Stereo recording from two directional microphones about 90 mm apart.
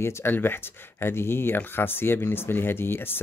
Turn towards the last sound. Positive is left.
turn(degrees=25)  # may be behind; listen again after turning